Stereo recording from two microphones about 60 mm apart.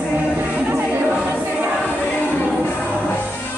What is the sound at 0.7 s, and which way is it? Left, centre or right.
Chatter, right.